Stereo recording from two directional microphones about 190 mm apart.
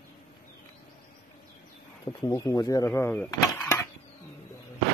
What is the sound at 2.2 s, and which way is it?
Speech, 20° left (ahead or behind).